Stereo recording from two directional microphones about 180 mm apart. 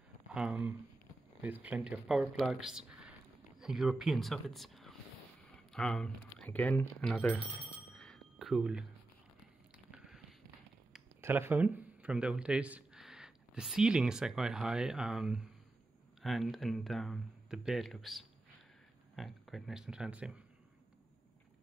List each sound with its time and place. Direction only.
0.3 s speech: 5° right (ahead or behind)
2.9 s a sound: 5° right (ahead or behind)
5.7 s speech: 5° left (ahead or behind)
8.0 s a sound: centre (ahead or behind)
9.8 s biting: 5° right (ahead or behind)
11.1 s speech: 15° right (ahead or behind)